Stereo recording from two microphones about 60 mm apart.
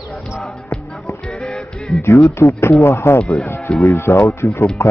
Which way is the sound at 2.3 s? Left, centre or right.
Left.